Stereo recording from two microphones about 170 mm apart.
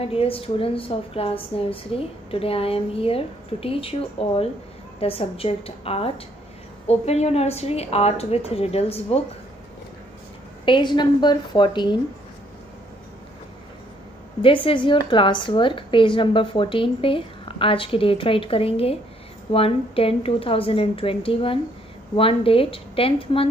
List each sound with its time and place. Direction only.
0.0 s a woman's voice: 35° left (ahead or behind)
10.6 s a woman's voice: 30° left (ahead or behind)
14.4 s a woman's voice: 30° left (ahead or behind)